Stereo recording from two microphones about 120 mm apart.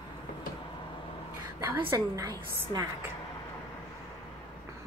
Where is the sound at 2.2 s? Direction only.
30° right (ahead or behind).